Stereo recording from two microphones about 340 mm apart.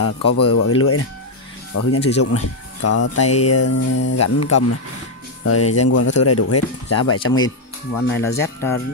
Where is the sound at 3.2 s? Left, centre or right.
Centre.